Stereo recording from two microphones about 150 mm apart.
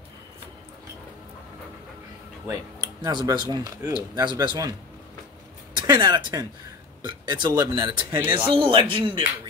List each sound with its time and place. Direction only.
2.4 s speech: 25° right (ahead or behind)
5.9 s speech: 30° right (ahead or behind)
8.2 s speech: 10° right (ahead or behind)
8.5 s speech: 35° right (ahead or behind)